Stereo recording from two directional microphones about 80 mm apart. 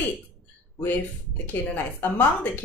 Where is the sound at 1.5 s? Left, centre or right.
Left.